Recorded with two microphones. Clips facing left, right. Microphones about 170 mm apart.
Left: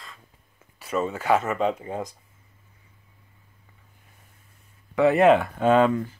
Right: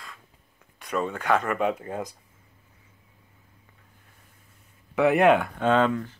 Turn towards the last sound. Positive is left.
turn(degrees=10)  # may be behind; listen again after turning